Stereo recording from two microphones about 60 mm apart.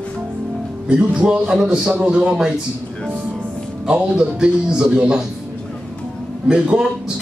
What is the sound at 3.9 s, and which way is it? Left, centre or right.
A man's voice, centre.